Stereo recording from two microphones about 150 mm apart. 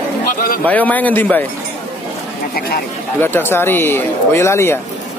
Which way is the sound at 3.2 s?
15° left (ahead or behind).